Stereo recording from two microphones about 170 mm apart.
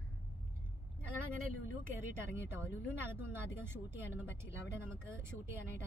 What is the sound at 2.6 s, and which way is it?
Speech, 15° right (ahead or behind).